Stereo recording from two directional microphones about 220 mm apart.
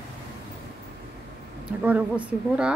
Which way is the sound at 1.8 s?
5° right (ahead or behind).